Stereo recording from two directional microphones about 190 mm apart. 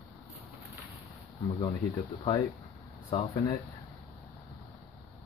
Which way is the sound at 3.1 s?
30° left (ahead or behind).